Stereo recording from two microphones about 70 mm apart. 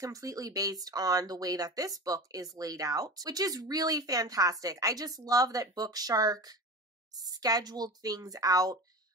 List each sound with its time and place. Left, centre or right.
0.0 s speech: right